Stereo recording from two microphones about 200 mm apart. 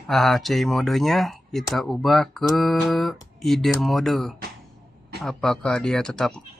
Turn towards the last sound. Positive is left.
turn(degrees=0)  # may be behind; listen again after turning